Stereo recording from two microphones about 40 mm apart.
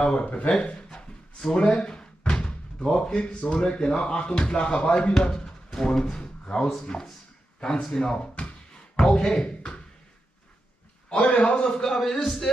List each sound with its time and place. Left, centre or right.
0.0 s speech: left
7.7 s a man's voice: left
11.1 s a man's voice: left; by 12.4 s centre